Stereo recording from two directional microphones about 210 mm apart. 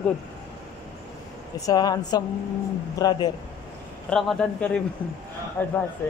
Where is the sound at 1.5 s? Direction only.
15° left (ahead or behind).